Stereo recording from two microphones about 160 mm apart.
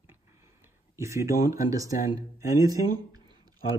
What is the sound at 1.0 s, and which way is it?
Speech, 20° right (ahead or behind).